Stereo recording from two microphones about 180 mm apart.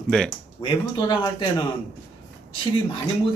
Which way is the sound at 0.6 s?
25° left (ahead or behind).